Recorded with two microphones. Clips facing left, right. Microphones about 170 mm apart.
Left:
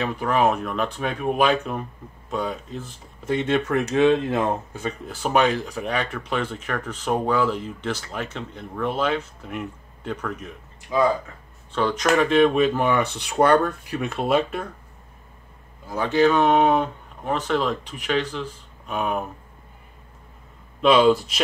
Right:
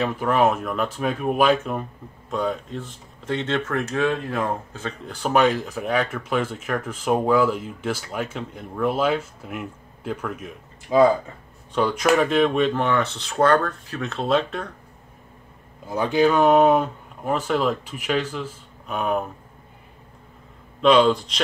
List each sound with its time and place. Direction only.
0.0 s speech: centre (ahead or behind)
10.9 s speech: 25° right (ahead or behind)
11.7 s speech: 10° right (ahead or behind); by 14.7 s 10° left (ahead or behind)
15.9 s speech: 15° right (ahead or behind)
20.8 s speech: 5° left (ahead or behind)